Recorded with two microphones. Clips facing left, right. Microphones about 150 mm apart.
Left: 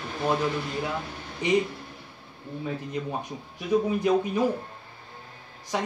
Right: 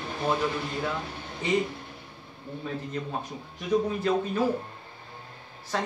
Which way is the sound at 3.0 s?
10° left (ahead or behind).